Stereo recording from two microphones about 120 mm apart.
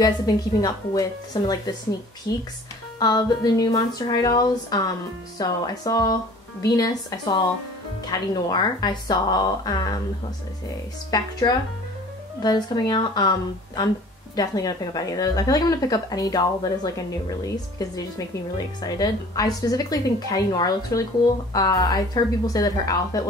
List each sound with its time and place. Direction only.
0.0 s a woman's voice: 35° left (ahead or behind)
3.0 s a woman's voice: 35° left (ahead or behind)
11.1 s a woman's voice: 35° left (ahead or behind)